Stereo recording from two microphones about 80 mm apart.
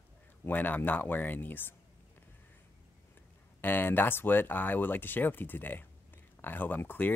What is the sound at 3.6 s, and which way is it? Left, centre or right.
Speech, left.